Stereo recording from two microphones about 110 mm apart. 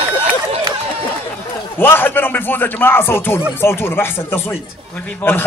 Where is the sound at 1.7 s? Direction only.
20° left (ahead or behind).